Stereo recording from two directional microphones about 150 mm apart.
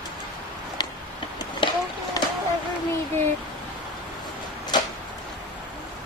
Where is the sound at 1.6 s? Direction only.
30° left (ahead or behind).